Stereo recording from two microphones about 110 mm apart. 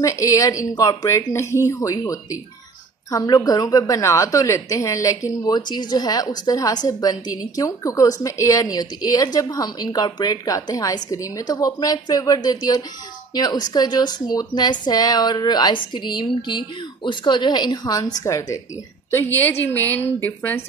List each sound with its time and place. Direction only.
0.0 s a woman's voice: 30° left (ahead or behind)